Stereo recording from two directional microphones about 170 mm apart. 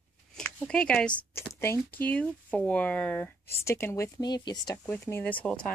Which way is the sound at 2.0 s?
10° left (ahead or behind).